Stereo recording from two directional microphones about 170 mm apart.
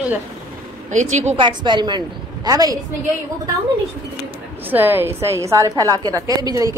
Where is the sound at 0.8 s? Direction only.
45° right (ahead or behind).